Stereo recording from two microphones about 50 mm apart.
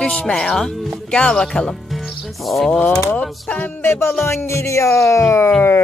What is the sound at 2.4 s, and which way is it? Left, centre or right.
Speech, centre.